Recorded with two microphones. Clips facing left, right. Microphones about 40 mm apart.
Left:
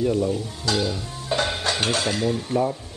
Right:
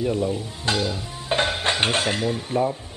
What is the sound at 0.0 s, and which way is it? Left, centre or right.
Speech, centre.